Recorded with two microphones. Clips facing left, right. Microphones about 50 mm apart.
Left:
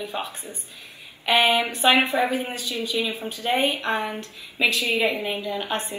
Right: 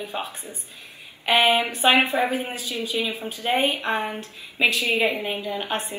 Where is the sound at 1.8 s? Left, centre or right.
Right.